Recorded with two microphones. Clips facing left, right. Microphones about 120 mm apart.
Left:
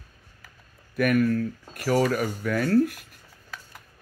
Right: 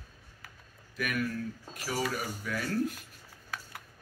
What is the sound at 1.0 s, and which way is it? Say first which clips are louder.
Speech: left 11 dB; 55° left (ahead or behind).